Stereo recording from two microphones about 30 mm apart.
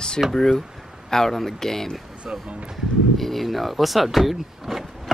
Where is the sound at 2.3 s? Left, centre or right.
Right.